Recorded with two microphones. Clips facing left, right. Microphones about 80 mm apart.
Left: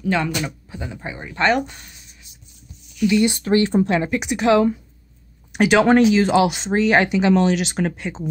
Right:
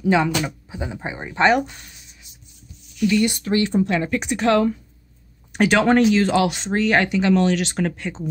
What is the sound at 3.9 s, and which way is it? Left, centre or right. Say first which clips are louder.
Speech: left 1 dB; centre.